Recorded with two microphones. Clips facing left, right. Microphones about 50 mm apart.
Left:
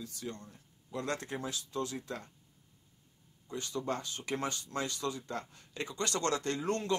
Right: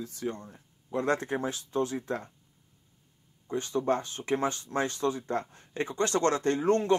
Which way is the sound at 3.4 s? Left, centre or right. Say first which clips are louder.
Right 8 dB; right.